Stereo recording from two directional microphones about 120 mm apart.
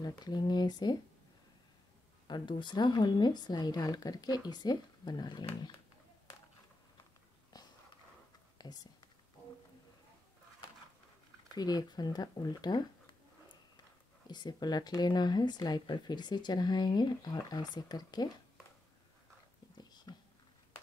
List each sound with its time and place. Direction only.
0.2 s speech: 35° left (ahead or behind)
2.2 s speech: 40° left (ahead or behind)
7.5 s a sound: 35° left (ahead or behind)
8.5 s whispering: 35° left (ahead or behind)
11.5 s speech: 35° left (ahead or behind)
14.2 s speech: 35° left (ahead or behind)
19.8 s whispering: 35° left (ahead or behind)